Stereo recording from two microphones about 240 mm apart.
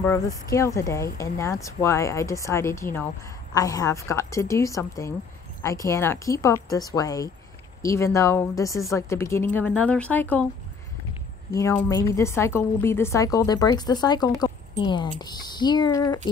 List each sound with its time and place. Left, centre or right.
0.0 s speech: centre
11.5 s speech: centre